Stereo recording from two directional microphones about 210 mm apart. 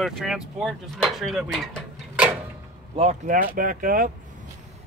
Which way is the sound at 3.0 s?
35° right (ahead or behind).